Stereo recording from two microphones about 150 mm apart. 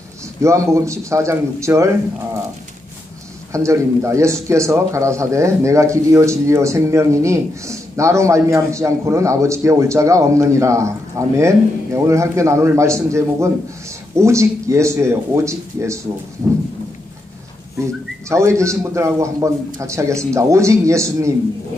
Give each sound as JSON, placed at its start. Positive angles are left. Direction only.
{"t": 0.4, "sound": "a man's voice", "side_deg": -20}
{"t": 3.5, "sound": "a man's voice", "side_deg": -20}
{"t": 18.3, "sound": "a man's voice", "side_deg": -20}